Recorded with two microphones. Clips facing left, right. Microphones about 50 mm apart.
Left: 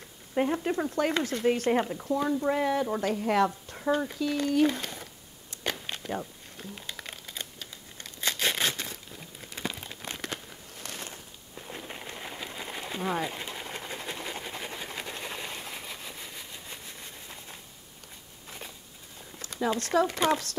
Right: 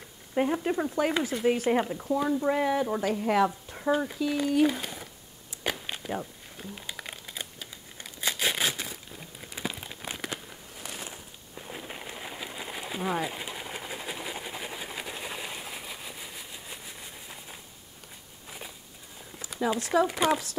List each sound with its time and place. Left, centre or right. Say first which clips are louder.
0.3 s speech: right 1 dB; centre
5.5 s a sound: right 1 dB; centre
9.4 s crumpling: even; centre
19.4 s speech: even; centre